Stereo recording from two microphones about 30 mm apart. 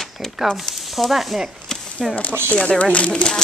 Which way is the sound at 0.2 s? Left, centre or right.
Centre.